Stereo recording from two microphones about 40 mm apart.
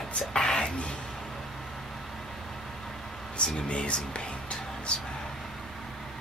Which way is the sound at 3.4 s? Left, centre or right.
Left.